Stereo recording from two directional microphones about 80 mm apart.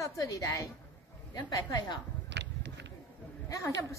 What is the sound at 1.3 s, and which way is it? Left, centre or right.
Speech, left.